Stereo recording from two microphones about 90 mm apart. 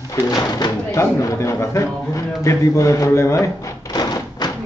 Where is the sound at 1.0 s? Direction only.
35° left (ahead or behind).